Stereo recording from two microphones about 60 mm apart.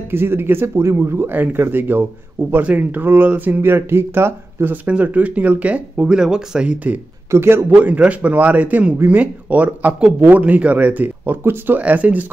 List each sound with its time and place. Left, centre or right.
0.1 s speech: right
3.7 s speech: right
4.8 s a man's voice: right
6.1 s speech: centre
7.2 s a man's voice: right
7.7 s a man's voice: right